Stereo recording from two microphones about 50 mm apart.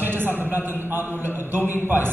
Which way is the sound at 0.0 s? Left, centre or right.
Right.